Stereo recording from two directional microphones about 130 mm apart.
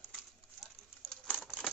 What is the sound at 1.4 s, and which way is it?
Typewriter, 5° right (ahead or behind).